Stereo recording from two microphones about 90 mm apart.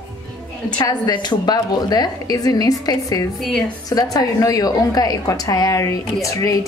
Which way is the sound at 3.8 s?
45° left (ahead or behind).